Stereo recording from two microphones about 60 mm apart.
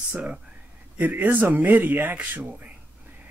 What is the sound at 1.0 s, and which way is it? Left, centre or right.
Speech, right.